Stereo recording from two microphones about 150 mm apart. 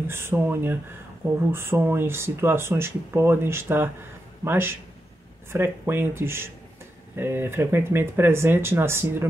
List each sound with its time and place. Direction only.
0.1 s speech: 15° right (ahead or behind)